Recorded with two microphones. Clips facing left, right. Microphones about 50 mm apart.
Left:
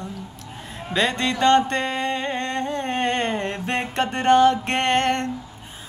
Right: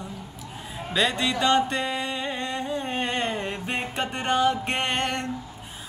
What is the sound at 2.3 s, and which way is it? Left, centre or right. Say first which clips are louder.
Music: left 4 dB; left.